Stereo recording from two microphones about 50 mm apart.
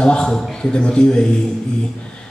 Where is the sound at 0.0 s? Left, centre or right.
Centre.